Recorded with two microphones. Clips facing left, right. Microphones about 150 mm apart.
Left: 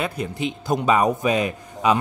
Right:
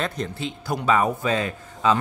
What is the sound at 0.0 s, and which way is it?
Speech, 10° left (ahead or behind).